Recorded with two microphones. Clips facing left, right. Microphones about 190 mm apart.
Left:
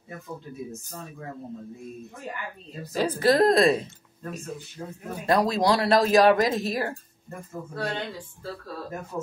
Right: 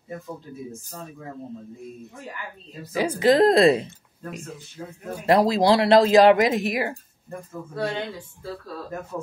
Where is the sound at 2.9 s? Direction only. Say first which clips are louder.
Right 3 dB; 15° right (ahead or behind).